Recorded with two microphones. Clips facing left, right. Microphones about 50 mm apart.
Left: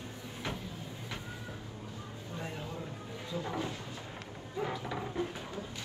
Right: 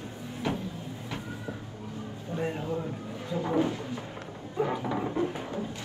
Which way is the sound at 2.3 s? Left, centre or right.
Right.